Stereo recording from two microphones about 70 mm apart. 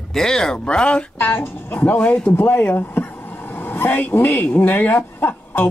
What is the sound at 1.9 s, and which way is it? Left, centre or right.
Speech, centre.